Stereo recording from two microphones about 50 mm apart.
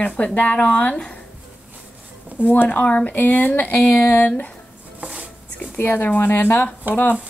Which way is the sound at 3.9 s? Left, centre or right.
Left.